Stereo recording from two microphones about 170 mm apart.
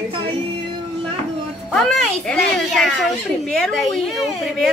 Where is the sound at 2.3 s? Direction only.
5° left (ahead or behind).